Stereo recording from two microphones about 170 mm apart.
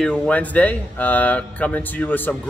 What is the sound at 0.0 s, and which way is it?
Speech, 5° left (ahead or behind).